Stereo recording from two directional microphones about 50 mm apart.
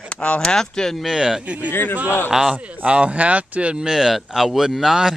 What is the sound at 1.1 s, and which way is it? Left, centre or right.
Speech, centre.